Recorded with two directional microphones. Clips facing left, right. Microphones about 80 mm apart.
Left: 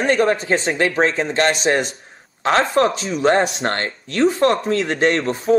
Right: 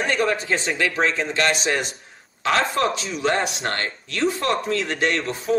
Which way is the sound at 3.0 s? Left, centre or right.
Left.